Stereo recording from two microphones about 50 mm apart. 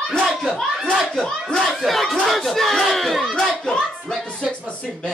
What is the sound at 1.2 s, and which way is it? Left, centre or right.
Speech, centre.